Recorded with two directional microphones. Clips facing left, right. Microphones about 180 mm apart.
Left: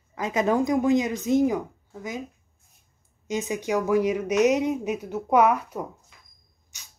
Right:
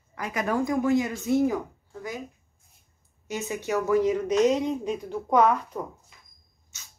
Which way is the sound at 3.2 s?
15° left (ahead or behind).